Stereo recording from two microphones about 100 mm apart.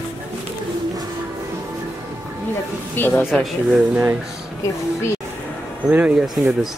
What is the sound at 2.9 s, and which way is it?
Speech, 20° left (ahead or behind).